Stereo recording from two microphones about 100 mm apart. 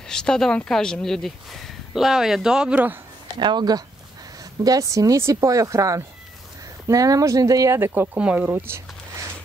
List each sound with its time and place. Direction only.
0.1 s speech: 5° left (ahead or behind); by 3.0 s 15° right (ahead or behind)
3.3 s speech: 50° right (ahead or behind)
4.6 s speech: 35° right (ahead or behind)